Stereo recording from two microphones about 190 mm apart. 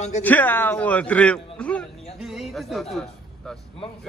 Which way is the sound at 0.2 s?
10° left (ahead or behind).